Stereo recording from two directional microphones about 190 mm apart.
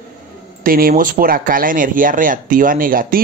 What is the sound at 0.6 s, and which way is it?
Speech, 50° right (ahead or behind).